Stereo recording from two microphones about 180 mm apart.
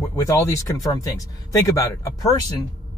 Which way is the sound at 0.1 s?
15° left (ahead or behind).